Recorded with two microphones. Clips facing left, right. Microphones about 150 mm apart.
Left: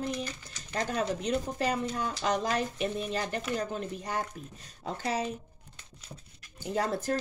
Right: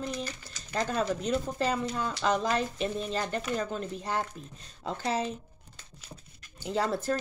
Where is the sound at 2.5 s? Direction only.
10° left (ahead or behind).